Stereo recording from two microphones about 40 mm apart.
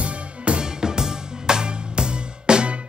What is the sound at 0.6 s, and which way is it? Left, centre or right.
Music, centre.